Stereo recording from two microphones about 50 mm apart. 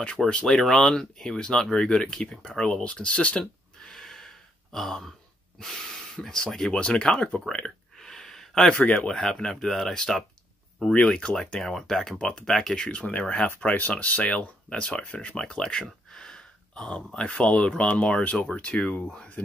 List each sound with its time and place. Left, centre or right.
0.5 s speech: centre
3.9 s a sound: centre
5.6 s speech: centre
6.8 s speech: left
7.5 s a sound: centre
8.8 s speech: left
9.1 s speech: centre
10.9 s speech: left
11.6 s speech: centre; by 19.5 s left